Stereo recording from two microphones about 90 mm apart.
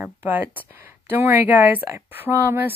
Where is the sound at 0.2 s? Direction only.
20° right (ahead or behind).